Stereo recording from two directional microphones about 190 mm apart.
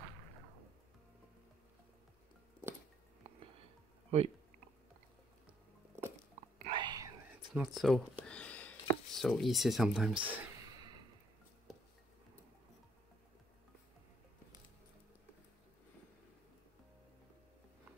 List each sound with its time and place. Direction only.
3.3 s music: 30° right (ahead or behind)
4.1 s speech: 30° right (ahead or behind)
6.6 s whispering: 25° right (ahead or behind)
7.5 s speech: centre (ahead or behind)
10.2 s a sound: 20° right (ahead or behind)
11.7 s a sound: centre (ahead or behind)